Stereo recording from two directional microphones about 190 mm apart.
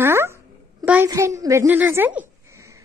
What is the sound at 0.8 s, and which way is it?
A woman's voice, 10° right (ahead or behind).